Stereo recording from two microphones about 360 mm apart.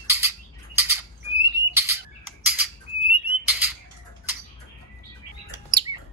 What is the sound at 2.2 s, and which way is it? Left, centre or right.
Squawk, left.